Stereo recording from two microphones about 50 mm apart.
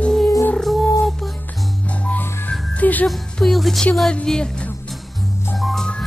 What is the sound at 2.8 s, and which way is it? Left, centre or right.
Music, left.